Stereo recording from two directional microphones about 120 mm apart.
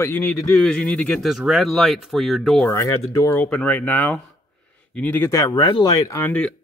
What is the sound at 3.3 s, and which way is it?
Speech, 10° left (ahead or behind).